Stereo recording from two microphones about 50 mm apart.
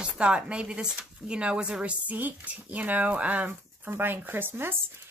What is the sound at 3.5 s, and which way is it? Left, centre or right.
Speech, right.